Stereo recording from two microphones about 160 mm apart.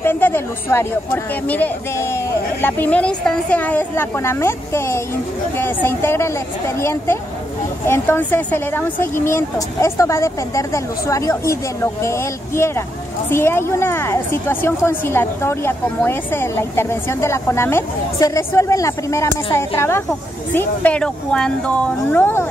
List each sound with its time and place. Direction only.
0.0 s a woman's voice: 15° left (ahead or behind)